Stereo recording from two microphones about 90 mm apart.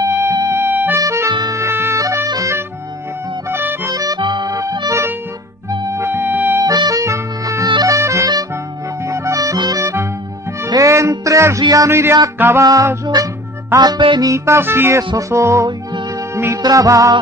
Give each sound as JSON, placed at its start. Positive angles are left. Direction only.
{"t": 0.0, "sound": "music", "side_deg": -35}
{"t": 2.2, "sound": "music", "side_deg": -40}
{"t": 3.4, "sound": "music", "side_deg": -25}
{"t": 3.9, "sound": "accordion", "side_deg": -40}
{"t": 4.2, "sound": "music", "side_deg": -55}
{"t": 6.6, "sound": "harmonica", "side_deg": -45}
{"t": 7.6, "sound": "music", "side_deg": -45}
{"t": 9.0, "sound": "accordion", "side_deg": -35}
{"t": 9.8, "sound": "music", "side_deg": -35}
{"t": 11.9, "sound": "speech", "side_deg": -30}
{"t": 12.6, "sound": "music", "side_deg": -40}
{"t": 13.7, "sound": "music", "side_deg": -50}
{"t": 14.2, "sound": "music", "side_deg": -35}